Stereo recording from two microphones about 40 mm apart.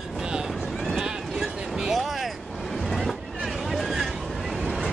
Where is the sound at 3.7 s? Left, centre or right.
Centre.